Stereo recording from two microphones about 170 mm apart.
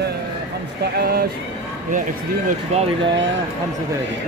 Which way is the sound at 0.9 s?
65° right (ahead or behind).